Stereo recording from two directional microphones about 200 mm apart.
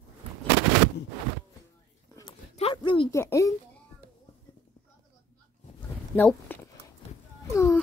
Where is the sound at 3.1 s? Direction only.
15° left (ahead or behind).